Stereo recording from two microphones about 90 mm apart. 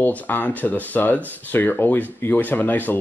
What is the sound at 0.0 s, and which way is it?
Speech, 20° left (ahead or behind).